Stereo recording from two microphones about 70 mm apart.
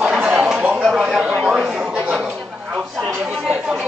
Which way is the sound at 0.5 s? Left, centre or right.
Right.